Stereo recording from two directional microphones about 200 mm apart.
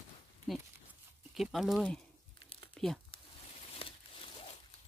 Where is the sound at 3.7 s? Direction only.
25° left (ahead or behind).